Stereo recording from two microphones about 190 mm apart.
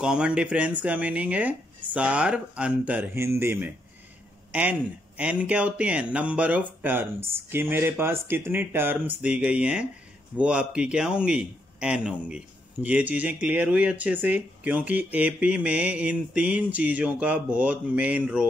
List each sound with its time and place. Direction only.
0.0 s a man's voice: 5° right (ahead or behind)